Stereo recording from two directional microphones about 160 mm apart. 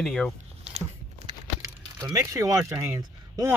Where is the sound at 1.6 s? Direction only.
20° right (ahead or behind).